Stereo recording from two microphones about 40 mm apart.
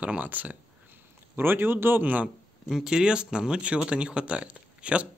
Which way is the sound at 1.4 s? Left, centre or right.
Right.